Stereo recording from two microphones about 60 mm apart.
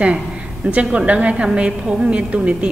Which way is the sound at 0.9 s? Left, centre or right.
Right.